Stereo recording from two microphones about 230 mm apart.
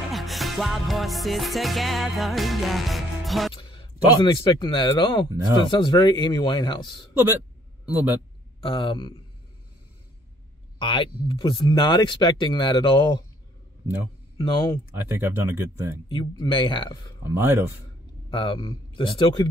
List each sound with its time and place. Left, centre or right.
0.1 s music: centre
3.5 s a sound: left
4.2 s speech: centre
7.8 s a man's voice: centre
8.6 s speech: left
10.8 s speech: left
14.4 s speech: centre
15.0 s speech: centre
16.1 s speech: centre
17.2 s speech: centre
18.3 s speech: left